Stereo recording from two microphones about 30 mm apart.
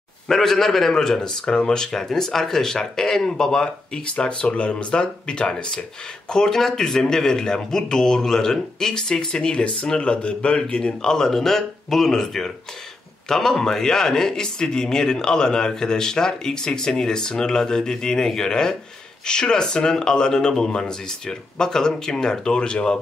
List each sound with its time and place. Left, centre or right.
0.3 s speech: centre
1.4 s speech: left
1.9 s speech: centre
4.0 s speech: left